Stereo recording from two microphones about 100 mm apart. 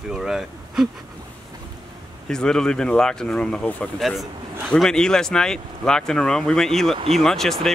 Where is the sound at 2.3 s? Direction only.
5° left (ahead or behind).